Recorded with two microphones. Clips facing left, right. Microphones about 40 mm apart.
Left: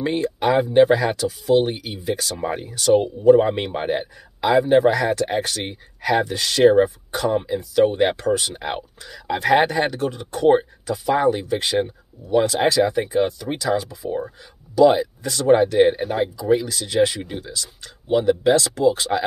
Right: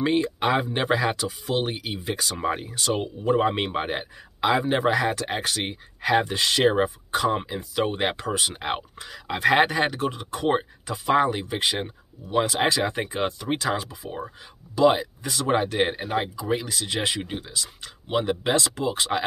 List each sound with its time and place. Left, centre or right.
0.0 s speech: right
6.1 s speech: right
7.4 s speech: right
12.7 s speech: right
18.1 s speech: right